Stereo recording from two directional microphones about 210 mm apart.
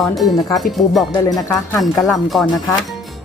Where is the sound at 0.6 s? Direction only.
Centre (ahead or behind).